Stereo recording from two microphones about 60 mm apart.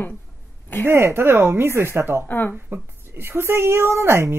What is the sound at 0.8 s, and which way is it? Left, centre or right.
Speech, right.